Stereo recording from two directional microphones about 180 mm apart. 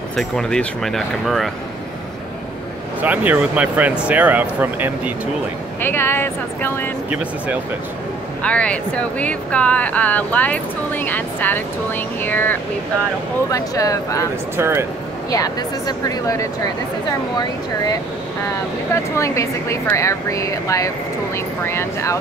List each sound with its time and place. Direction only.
0.1 s speech: 5° left (ahead or behind)
3.0 s speech: 10° right (ahead or behind)
5.8 s speech: 10° left (ahead or behind)
8.4 s speech: 5° left (ahead or behind)
14.6 s speech: 15° right (ahead or behind)
16.1 s speech: 20° left (ahead or behind)
19.1 s speech: 15° left (ahead or behind)